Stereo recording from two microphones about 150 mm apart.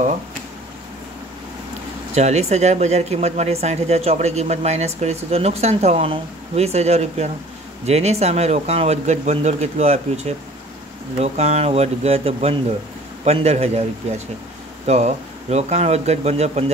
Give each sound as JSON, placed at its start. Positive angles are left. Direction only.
{"t": 2.1, "sound": "speech", "side_deg": -50}